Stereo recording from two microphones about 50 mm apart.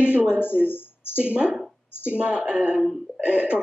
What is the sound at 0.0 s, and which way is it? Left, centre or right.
Speech, right.